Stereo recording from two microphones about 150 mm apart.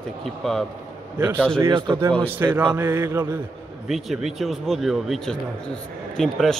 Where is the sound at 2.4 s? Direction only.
20° right (ahead or behind).